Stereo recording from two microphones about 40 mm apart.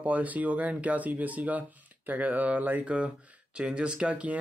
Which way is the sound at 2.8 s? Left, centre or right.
Right.